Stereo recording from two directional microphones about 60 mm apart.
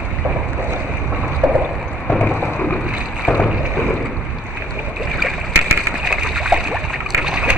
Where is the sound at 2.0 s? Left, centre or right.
Centre.